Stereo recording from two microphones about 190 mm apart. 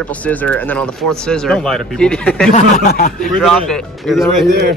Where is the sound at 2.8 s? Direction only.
50° left (ahead or behind).